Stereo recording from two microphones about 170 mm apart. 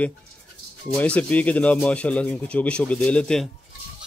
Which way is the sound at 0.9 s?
10° left (ahead or behind).